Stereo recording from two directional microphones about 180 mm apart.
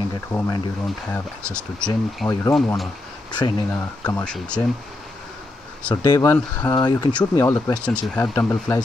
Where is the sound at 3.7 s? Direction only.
10° left (ahead or behind).